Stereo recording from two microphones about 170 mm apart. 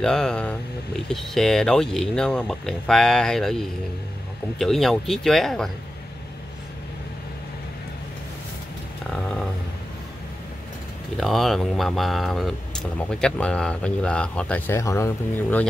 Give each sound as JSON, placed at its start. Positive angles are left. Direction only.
{"t": 0.0, "sound": "speech", "side_deg": 5}
{"t": 11.1, "sound": "speech", "side_deg": 0}